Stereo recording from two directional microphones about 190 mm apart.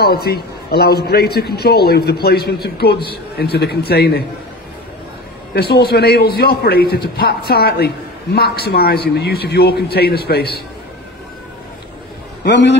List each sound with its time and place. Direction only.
0.0 s a man's voice: 55° left (ahead or behind)
5.5 s a man's voice: 60° left (ahead or behind)
12.4 s a man's voice: 65° left (ahead or behind)